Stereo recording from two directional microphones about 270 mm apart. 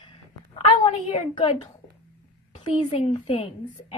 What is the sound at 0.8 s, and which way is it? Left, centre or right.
A woman's voice, left.